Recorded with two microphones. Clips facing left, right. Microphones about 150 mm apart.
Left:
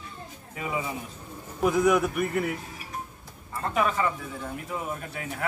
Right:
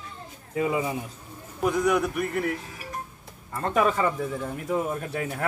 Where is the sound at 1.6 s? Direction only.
Centre (ahead or behind).